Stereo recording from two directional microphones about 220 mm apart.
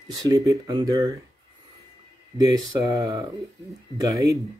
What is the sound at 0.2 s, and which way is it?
Speech, 15° right (ahead or behind).